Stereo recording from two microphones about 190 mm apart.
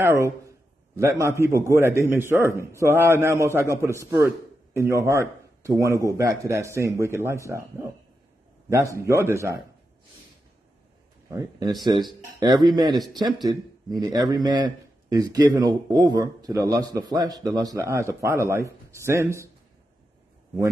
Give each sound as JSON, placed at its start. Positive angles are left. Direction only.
{"t": 0.0, "sound": "a man's voice", "side_deg": -15}
{"t": 11.2, "sound": "speech", "side_deg": -15}